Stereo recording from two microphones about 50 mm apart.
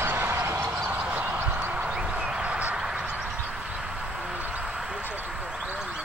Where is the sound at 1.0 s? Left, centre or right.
Right.